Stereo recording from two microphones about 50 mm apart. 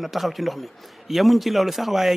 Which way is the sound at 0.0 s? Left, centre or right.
Centre.